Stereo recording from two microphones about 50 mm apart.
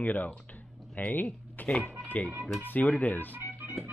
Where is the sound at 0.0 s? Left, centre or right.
Left.